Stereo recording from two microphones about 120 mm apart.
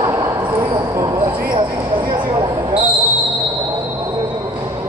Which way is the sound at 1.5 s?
40° right (ahead or behind).